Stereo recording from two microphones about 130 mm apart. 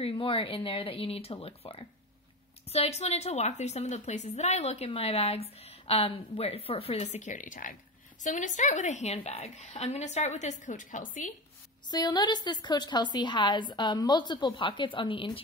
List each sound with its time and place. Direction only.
0.0 s a woman's voice: 45° left (ahead or behind); by 7.7 s 90° left
8.2 s a woman's voice: 75° left (ahead or behind); by 11.3 s 90° left
11.9 s a woman's voice: 30° left (ahead or behind)